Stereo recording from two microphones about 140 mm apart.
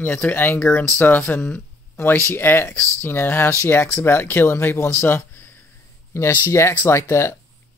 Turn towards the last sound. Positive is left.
turn(degrees=20)  # may be behind; listen again after turning